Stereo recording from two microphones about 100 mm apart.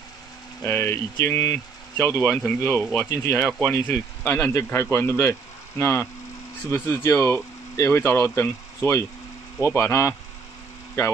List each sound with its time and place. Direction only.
0.7 s speech: 20° left (ahead or behind)